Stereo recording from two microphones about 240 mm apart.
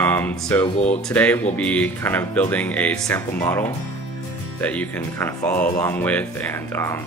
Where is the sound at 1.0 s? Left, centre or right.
Centre.